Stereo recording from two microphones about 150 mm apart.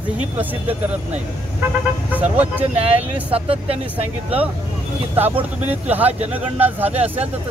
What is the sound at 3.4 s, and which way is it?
Speech, 40° right (ahead or behind).